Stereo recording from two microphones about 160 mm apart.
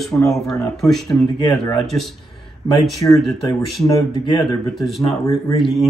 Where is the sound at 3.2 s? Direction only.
Centre (ahead or behind).